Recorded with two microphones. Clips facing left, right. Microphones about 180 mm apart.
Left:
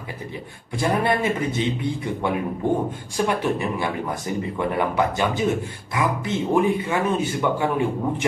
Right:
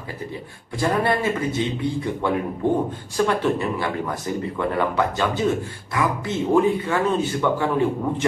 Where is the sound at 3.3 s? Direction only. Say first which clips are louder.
Even; 15° left (ahead or behind).